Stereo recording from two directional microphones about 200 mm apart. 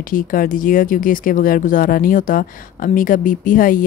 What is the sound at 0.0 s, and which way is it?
Speech, 45° left (ahead or behind).